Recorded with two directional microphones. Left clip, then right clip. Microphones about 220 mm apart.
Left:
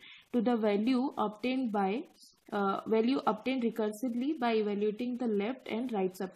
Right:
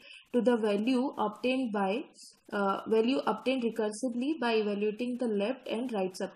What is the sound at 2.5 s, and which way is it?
Speech, 50° left (ahead or behind).